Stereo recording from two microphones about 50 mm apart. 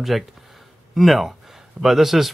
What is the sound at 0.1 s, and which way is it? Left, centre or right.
Speech, centre.